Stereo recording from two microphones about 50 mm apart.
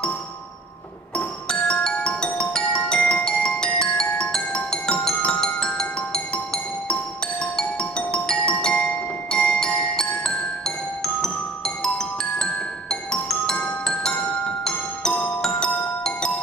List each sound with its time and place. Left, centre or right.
1.1 s music: centre
2.3 s marimba: centre
9.3 s music: centre
11.1 s marimba: centre
14.6 s marimba: centre
15.4 s glockenspiel: centre